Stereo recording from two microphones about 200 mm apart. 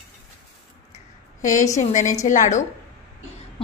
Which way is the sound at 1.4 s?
40° left (ahead or behind).